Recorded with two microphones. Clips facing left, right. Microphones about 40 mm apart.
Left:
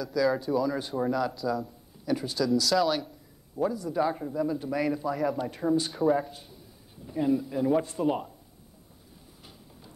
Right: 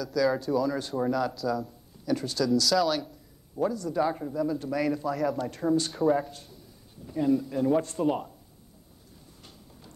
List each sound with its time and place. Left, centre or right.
0.0 s a man's voice: centre